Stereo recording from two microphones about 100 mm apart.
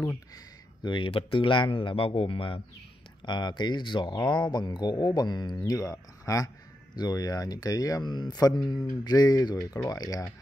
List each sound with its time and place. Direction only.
0.8 s speech: 55° left (ahead or behind)
3.3 s speech: 45° left (ahead or behind)